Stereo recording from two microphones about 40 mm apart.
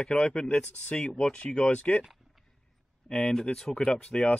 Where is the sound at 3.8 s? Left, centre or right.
Left.